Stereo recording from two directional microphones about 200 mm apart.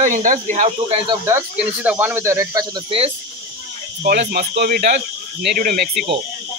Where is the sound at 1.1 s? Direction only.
15° right (ahead or behind); by 3.1 s 30° right (ahead or behind).